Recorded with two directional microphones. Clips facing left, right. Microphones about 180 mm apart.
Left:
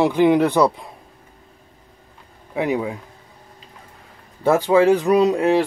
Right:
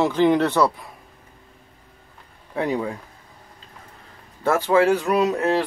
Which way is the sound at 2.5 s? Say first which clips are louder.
Left 2 dB; 10° left (ahead or behind).